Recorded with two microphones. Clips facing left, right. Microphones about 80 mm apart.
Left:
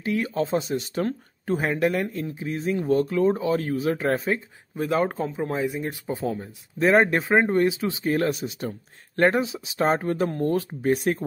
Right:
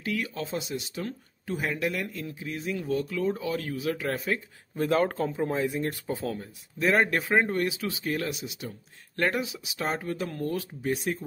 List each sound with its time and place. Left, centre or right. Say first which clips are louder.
0.0 s speech: left 7 dB; left
4.7 s speech: left 1 dB; centre
6.4 s speech: left 6 dB; left